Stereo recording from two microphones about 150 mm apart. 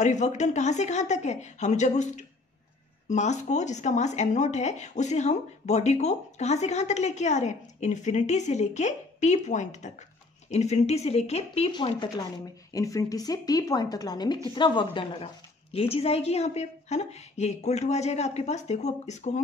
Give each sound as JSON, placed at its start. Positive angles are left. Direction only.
{"t": 0.0, "sound": "speech", "side_deg": 50}
{"t": 12.7, "sound": "a woman's voice", "side_deg": 20}